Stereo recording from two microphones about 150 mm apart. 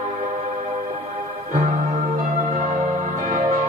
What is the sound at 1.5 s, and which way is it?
Music, 55° right (ahead or behind).